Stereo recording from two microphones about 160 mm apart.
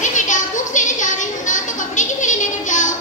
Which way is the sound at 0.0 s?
50° left (ahead or behind).